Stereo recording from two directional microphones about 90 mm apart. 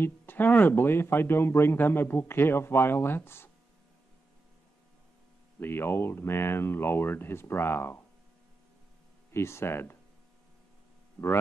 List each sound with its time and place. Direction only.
0.0 s speech: 20° left (ahead or behind)
5.6 s speech: 25° left (ahead or behind)
9.3 s speech: 30° left (ahead or behind)